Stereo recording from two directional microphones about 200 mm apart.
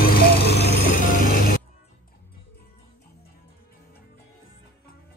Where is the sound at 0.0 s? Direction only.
50° left (ahead or behind).